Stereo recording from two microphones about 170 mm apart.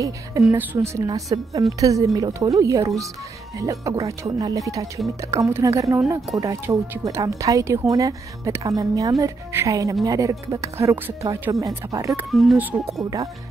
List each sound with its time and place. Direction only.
0.5 s a woman's voice: 15° right (ahead or behind)
12.3 s speech: centre (ahead or behind)
12.5 s a woman's voice: 10° right (ahead or behind)